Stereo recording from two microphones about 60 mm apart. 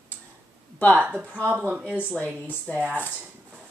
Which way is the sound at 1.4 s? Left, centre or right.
Right.